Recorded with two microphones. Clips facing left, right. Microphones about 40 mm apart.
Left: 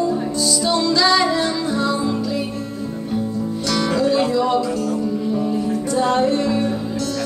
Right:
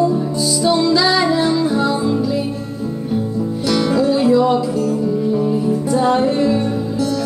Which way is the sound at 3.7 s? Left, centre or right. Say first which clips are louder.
Right 3 dB; centre.